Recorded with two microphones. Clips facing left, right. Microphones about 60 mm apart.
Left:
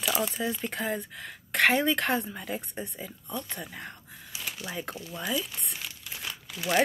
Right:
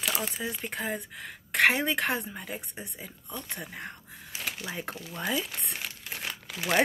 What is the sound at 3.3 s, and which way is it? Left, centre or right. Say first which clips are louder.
Speech: left 2 dB; right.